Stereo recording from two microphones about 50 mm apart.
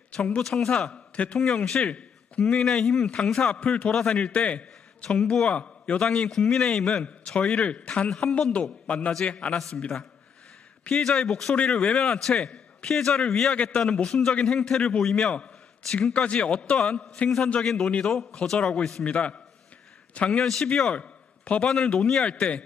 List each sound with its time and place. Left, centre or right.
0.1 s speech: left
0.4 s a man's voice: centre
1.4 s speech: centre
2.4 s a man's voice: centre
3.3 s a man's voice: left
13.6 s a man's voice: left
17.6 s a man's voice: centre
19.0 s a man's voice: left
20.2 s a man's voice: centre